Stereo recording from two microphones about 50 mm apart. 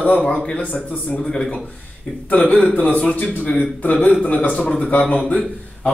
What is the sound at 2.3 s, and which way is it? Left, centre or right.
A man's voice, left.